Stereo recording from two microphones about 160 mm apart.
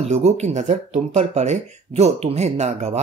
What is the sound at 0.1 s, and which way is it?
Speech, 45° right (ahead or behind).